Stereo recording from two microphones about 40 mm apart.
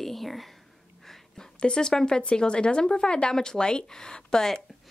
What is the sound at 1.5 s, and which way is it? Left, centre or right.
Speech, left.